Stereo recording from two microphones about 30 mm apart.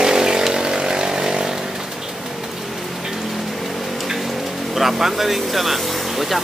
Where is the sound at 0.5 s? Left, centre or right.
Right.